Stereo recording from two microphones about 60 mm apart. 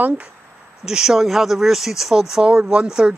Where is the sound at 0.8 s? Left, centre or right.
Centre.